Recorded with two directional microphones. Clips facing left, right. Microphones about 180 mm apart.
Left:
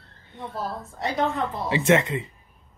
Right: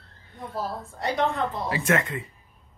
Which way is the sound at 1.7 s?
25° left (ahead or behind).